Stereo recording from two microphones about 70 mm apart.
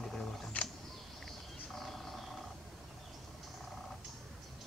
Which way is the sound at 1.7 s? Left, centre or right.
Centre.